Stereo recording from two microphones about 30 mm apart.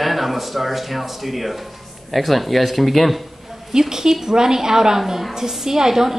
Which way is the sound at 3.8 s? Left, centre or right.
Centre.